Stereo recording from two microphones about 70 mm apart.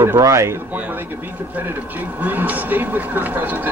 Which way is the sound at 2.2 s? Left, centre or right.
Right.